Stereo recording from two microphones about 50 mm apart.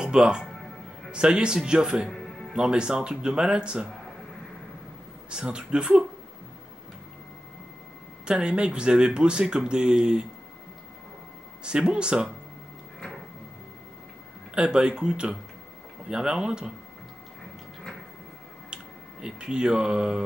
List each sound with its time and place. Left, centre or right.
0.0 s speech: centre
2.0 s music: centre
2.5 s speech: centre
5.3 s speech: centre
8.3 s speech: centre
11.6 s speech: centre
14.5 s speech: centre
19.2 s speech: centre